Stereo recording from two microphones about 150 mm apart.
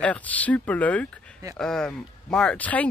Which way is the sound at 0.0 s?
10° left (ahead or behind).